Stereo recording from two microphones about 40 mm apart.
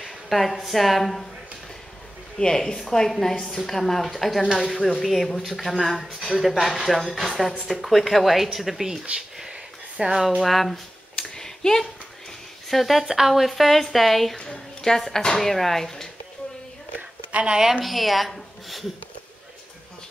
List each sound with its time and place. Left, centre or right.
0.0 s a sound: centre
0.6 s speech: centre
2.3 s speech: centre
10.0 s speech: right
10.4 s speech: centre
11.1 s a sound: centre
12.6 s speech: centre
13.0 s speech: centre
13.3 s speech: centre
14.4 s speech: centre
17.3 s speech: right
17.6 s speech: centre
17.8 s speech: centre